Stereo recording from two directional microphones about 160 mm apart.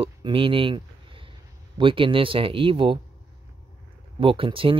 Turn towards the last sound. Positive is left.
turn(degrees=-35)  # may be behind; listen again after turning